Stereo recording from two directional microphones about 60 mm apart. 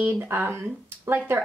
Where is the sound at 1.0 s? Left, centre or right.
Right.